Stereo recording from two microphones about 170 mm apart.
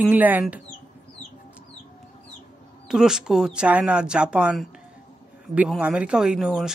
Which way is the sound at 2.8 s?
5° right (ahead or behind).